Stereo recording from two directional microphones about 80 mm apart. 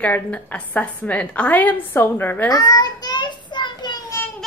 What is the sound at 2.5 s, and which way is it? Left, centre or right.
Child singing, left.